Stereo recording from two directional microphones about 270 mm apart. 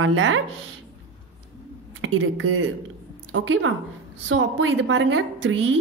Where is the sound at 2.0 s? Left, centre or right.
Right.